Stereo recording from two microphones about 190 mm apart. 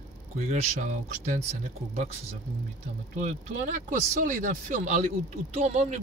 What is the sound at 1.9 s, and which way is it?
Speech, 35° right (ahead or behind).